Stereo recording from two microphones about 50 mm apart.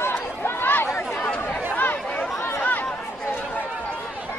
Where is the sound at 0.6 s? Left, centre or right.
Left.